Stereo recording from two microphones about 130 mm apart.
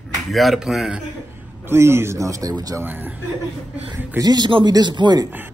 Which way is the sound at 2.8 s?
15° right (ahead or behind).